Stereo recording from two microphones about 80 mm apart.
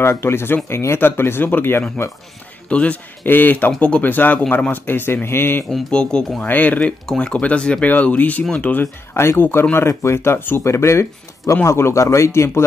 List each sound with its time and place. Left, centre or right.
0.0 s a man's voice: left
2.7 s a man's voice: centre
5.7 s a man's voice: centre
9.1 s speech: left